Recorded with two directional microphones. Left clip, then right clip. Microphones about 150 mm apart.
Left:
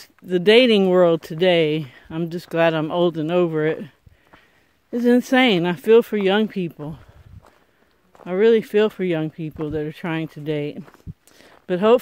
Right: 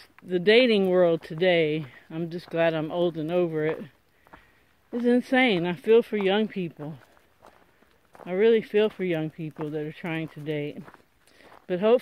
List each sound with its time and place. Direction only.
0.0 s speech: 50° left (ahead or behind)
5.0 s speech: 55° left (ahead or behind)
8.3 s speech: 45° left (ahead or behind)